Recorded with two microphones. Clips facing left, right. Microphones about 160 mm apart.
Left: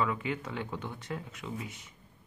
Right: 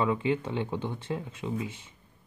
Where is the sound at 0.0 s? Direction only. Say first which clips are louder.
Right 5 dB; 25° right (ahead or behind).